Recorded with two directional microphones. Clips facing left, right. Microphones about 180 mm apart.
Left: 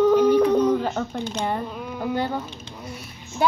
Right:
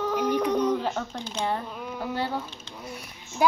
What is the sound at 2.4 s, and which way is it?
Speech, 10° left (ahead or behind).